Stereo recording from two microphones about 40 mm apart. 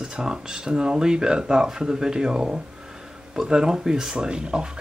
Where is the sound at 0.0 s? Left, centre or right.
Centre.